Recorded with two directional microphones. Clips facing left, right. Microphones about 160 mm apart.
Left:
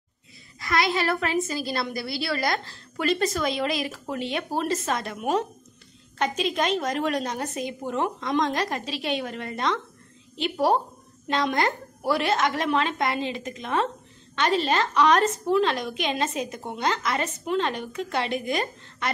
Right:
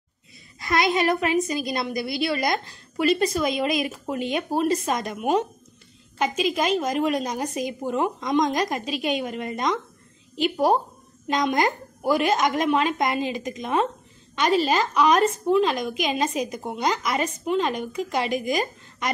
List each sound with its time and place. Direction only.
0.6 s a woman's voice: 20° right (ahead or behind)